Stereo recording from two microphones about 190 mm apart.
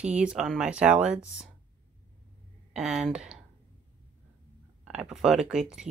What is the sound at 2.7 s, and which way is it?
Speech, 5° right (ahead or behind).